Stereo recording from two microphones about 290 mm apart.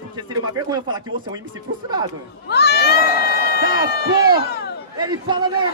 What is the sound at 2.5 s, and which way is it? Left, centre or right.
Speech, left.